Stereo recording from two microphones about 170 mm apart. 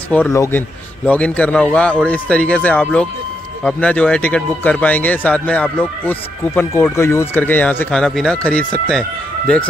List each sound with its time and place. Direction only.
0.1 s speech: 15° left (ahead or behind)